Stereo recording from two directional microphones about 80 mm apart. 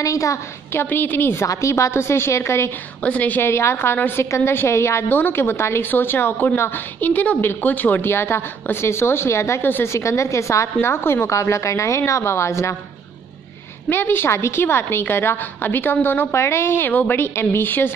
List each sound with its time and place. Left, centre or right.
0.0 s a woman's voice: left
0.8 s a woman's voice: left
1.3 s a woman's voice: left
3.0 s a woman's voice: centre; by 12.7 s left
13.8 s a woman's voice: left